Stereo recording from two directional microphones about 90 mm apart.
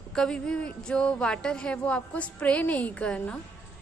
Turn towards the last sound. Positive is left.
turn(degrees=10)  # may be behind; listen again after turning